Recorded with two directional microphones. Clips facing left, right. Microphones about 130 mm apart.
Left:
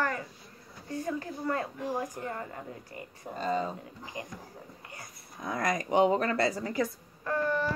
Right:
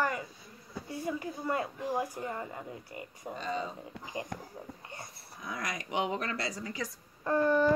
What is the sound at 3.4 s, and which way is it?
Speech, 40° left (ahead or behind).